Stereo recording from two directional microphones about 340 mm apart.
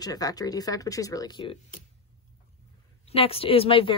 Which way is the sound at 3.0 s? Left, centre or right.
Centre.